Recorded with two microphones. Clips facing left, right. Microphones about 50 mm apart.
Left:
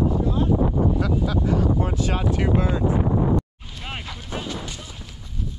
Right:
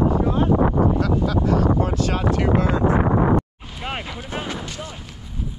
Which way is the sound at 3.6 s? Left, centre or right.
Right.